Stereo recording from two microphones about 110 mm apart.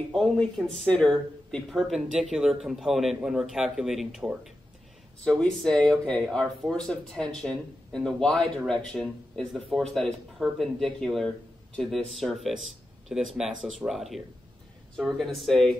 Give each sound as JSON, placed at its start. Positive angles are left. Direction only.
{"t": 0.1, "sound": "speech", "side_deg": 5}
{"t": 5.4, "sound": "speech", "side_deg": 5}